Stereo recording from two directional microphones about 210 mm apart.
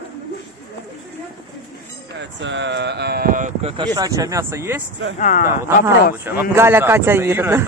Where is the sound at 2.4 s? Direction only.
55° right (ahead or behind); by 3.7 s 40° right (ahead or behind).